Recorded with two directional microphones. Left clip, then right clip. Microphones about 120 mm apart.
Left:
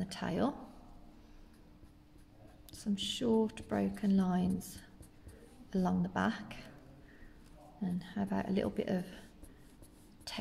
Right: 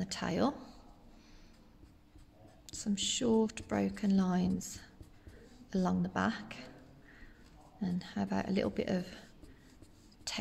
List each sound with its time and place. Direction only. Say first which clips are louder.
0.0 s speech: right 2 dB; 15° right (ahead or behind)
2.7 s speech: right 3 dB; 20° right (ahead or behind)
7.8 s speech: right 1 dB; 20° right (ahead or behind)
10.3 s speech: right 3 dB; 15° right (ahead or behind)